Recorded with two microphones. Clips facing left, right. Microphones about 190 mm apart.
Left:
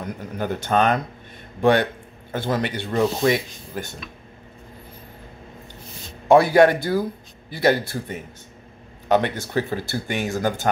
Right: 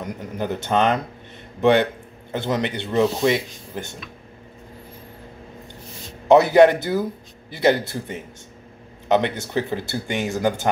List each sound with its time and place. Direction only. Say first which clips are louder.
0.0 s speech: right 1 dB; 25° right (ahead or behind)
6.2 s speech: right 1 dB; 20° right (ahead or behind)